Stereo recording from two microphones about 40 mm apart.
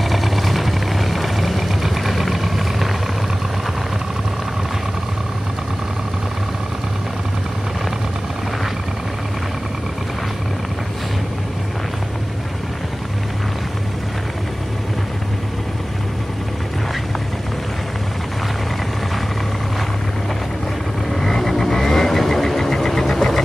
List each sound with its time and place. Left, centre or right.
0.1 s vehicle: centre
21.1 s vehicle: centre